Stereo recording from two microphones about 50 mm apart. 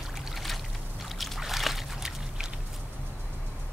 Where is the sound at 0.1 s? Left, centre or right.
Centre.